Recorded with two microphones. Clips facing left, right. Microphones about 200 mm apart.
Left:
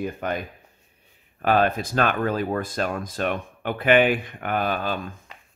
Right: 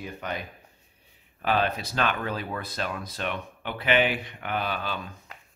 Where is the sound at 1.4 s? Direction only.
50° left (ahead or behind).